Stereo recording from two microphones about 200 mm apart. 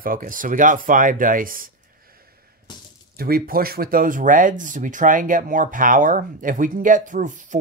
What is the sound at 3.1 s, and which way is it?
Speech, 50° right (ahead or behind).